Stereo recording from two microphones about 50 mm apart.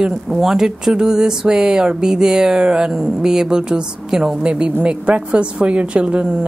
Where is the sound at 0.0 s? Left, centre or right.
Centre.